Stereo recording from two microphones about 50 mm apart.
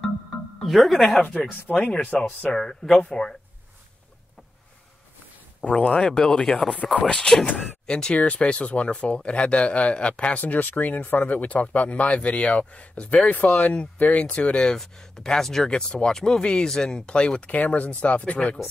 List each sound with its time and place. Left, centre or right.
0.6 s speech: centre
1.2 s speech: centre
1.7 s speech: centre
5.7 s speech: left
10.4 s speech: left
14.8 s speech: centre; by 18.6 s left